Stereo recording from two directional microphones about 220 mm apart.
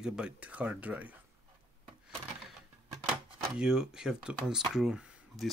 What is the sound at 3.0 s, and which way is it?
Speech, 5° right (ahead or behind).